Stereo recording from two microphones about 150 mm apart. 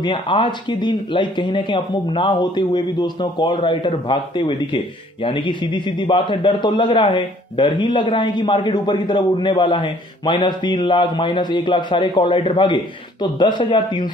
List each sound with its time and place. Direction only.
0.0 s speech: 30° left (ahead or behind)